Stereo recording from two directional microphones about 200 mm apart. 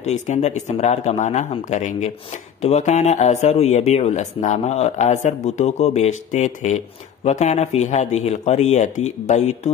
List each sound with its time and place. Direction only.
0.0 s speech: 35° left (ahead or behind)